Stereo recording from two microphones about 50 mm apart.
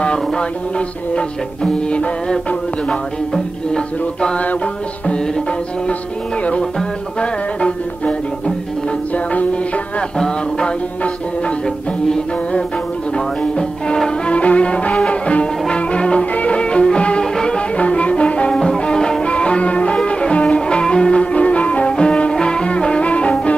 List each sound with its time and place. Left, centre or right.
0.0 s music: centre
3.7 s music: centre
5.0 s tabla: centre
6.6 s music: centre
10.1 s music: centre
17.7 s music: left